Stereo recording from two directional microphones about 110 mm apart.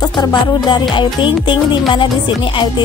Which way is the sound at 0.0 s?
40° left (ahead or behind).